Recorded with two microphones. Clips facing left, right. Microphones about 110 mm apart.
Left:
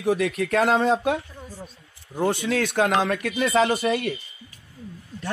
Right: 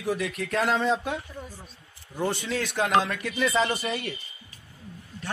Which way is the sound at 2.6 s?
55° left (ahead or behind).